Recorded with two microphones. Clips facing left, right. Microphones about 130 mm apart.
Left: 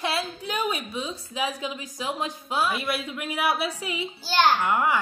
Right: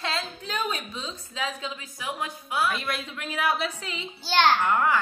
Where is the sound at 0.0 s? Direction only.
10° left (ahead or behind).